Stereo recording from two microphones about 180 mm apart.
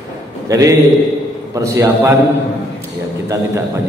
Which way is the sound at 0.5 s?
20° right (ahead or behind).